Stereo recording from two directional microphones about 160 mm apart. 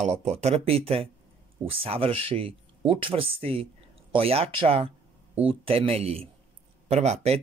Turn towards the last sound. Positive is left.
turn(degrees=-40)  # may be behind; listen again after turning